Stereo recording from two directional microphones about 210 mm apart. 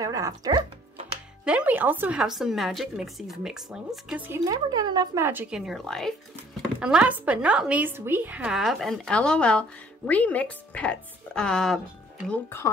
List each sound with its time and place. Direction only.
0.0 s speech: 15° right (ahead or behind)
1.4 s a woman's voice: 5° right (ahead or behind)
4.5 s a woman's voice: 20° right (ahead or behind); by 12.4 s centre (ahead or behind)